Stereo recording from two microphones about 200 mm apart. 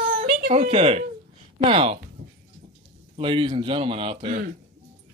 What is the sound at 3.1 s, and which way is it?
A man's voice, 25° right (ahead or behind).